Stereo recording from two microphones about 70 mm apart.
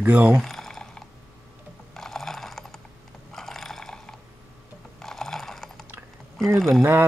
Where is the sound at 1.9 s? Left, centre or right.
Centre.